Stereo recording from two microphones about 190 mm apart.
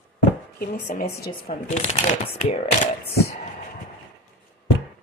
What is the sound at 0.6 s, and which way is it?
Speech, 55° left (ahead or behind).